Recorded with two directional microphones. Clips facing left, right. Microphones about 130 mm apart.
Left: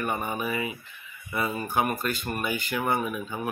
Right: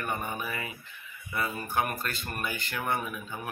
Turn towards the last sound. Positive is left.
turn(degrees=15)  # may be behind; listen again after turning